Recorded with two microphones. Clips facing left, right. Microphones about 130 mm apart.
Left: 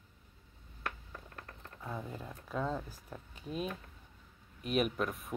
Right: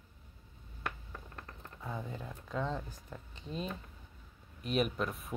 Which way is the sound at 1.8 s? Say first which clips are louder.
Even; centre (ahead or behind).